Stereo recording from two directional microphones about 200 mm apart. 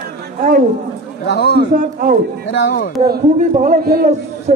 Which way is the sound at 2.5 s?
55° left (ahead or behind).